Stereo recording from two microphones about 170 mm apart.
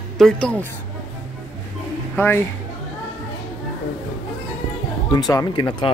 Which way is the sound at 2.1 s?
10° left (ahead or behind).